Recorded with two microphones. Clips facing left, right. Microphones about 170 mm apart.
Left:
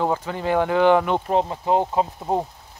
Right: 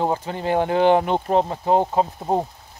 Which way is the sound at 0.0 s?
25° right (ahead or behind).